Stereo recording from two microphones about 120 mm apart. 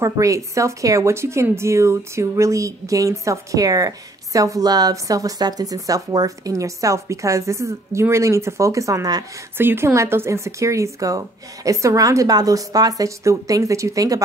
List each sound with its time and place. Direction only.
0.0 s speech: 25° right (ahead or behind)
9.6 s speech: 20° right (ahead or behind)